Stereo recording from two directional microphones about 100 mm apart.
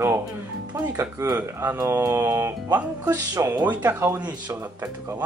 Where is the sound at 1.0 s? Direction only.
40° right (ahead or behind).